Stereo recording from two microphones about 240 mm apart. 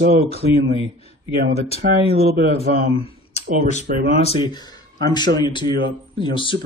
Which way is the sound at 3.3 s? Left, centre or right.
Left.